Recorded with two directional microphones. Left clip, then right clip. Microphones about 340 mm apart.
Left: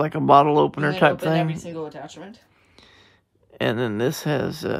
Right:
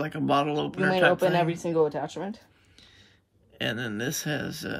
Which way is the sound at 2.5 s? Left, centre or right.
Centre.